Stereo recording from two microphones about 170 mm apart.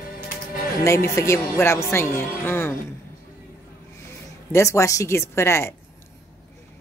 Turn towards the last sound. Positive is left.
turn(degrees=15)  # may be behind; listen again after turning